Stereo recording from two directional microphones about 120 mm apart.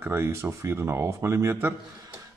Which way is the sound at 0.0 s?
20° right (ahead or behind).